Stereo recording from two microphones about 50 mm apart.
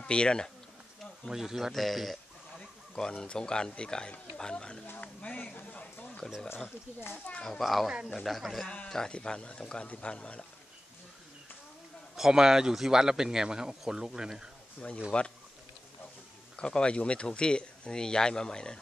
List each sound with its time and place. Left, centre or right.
0.0 s speech: centre
1.3 s speech: centre
2.6 s a man's voice: centre
4.9 s a sound: left
7.4 s speech: centre
8.6 s speech: left
12.2 s a man's voice: centre
15.1 s speech: left
16.5 s speech: centre